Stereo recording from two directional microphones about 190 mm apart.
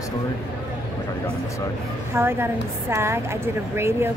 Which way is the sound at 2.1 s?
10° right (ahead or behind).